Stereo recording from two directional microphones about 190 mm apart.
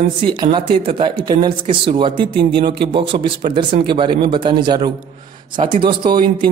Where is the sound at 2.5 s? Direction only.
60° right (ahead or behind).